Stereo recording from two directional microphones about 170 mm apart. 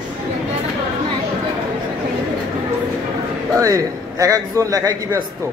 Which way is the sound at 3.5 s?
20° right (ahead or behind).